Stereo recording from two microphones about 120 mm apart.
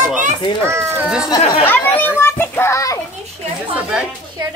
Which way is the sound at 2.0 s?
15° left (ahead or behind).